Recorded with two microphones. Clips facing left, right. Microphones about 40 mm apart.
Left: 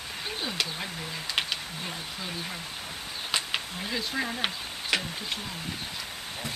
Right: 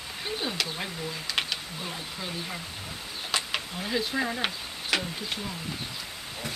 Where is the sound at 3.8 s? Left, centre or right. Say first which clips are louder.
Right 5 dB; centre.